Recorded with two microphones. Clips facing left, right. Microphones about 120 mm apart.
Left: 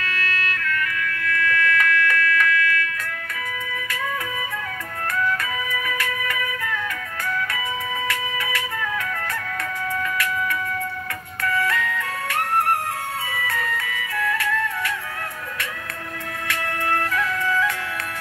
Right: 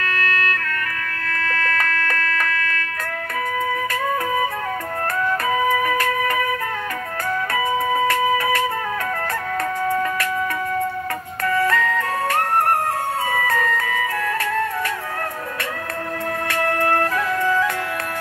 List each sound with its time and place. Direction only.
0.0 s music: 40° right (ahead or behind)
9.8 s music: 40° right (ahead or behind)
11.4 s music: 40° right (ahead or behind)
16.4 s music: 40° right (ahead or behind)